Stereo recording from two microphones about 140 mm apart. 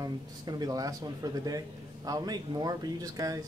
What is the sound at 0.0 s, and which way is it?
Speech, 25° right (ahead or behind).